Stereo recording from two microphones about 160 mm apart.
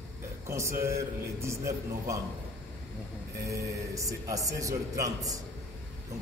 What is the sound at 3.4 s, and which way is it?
A man's voice, 20° right (ahead or behind).